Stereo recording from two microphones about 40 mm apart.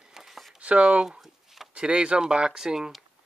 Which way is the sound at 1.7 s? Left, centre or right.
Right.